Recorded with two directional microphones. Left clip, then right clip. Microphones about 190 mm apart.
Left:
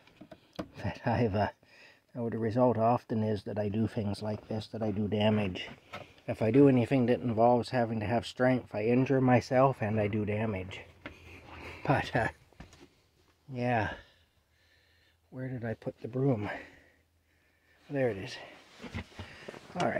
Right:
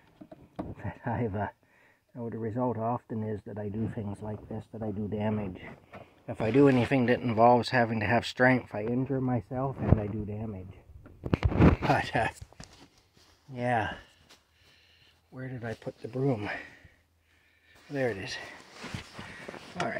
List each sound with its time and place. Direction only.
0.7 s speech: 40° left (ahead or behind)
6.2 s speech: 30° left (ahead or behind)
6.6 s speech: 15° left (ahead or behind)
8.8 s speech: 25° left (ahead or behind)
13.5 s speech: 30° left (ahead or behind)
15.3 s speech: 30° left (ahead or behind)
16.1 s speech: 20° left (ahead or behind)
17.9 s speech: 10° left (ahead or behind)